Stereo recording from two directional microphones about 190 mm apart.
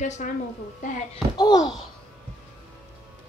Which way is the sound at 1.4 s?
20° left (ahead or behind).